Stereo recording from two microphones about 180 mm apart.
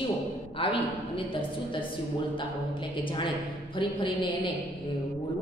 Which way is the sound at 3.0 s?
25° left (ahead or behind).